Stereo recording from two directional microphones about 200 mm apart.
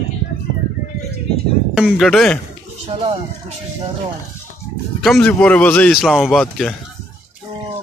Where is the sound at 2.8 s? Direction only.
30° right (ahead or behind).